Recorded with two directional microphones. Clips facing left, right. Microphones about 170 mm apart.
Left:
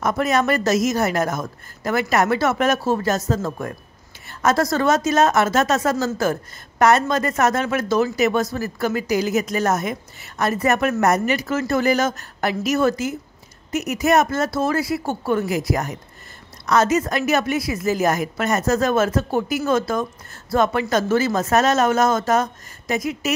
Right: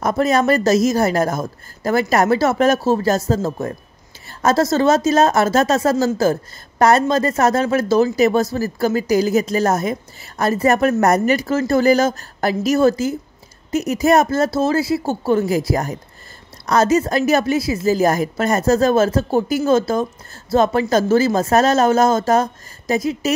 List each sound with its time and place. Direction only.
0.0 s a woman's voice: 35° right (ahead or behind)